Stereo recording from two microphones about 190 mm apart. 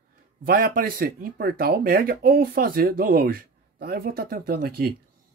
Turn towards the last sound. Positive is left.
turn(degrees=-50)  # may be behind; listen again after turning